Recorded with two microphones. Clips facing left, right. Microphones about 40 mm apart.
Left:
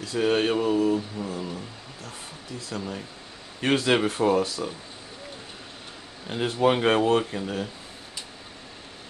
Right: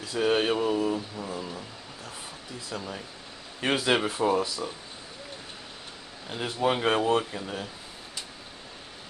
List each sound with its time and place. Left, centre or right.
0.0 s speech: centre
2.7 s speech: centre
4.6 s speech: centre
6.2 s speech: centre